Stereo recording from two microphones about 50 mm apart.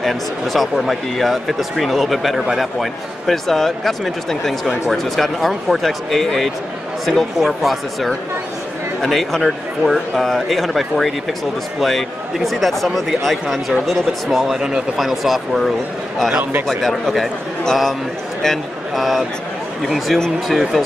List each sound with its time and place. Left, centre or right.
0.0 s speech: centre